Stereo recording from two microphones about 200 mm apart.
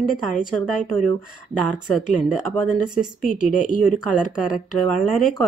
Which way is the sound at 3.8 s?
Centre (ahead or behind).